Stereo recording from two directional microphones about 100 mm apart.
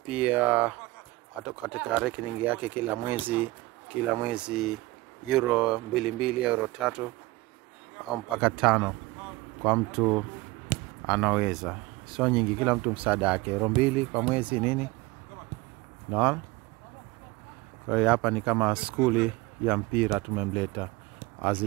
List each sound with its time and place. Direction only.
0.1 s speech: 15° right (ahead or behind)
8.4 s speech: 10° right (ahead or behind)
16.1 s speech: 10° right (ahead or behind)
17.8 s speech: 10° right (ahead or behind)